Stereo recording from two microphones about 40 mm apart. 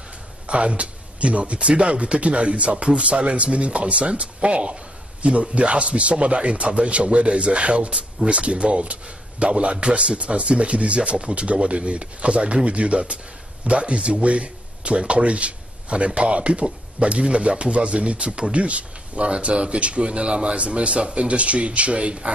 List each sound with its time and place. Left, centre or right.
0.5 s speech: right